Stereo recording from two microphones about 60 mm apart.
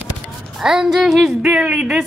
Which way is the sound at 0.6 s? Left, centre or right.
Centre.